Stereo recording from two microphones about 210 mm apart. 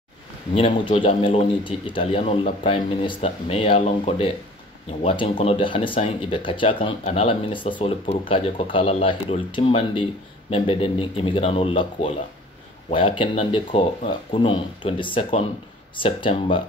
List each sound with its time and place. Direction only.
0.6 s speech: 25° left (ahead or behind)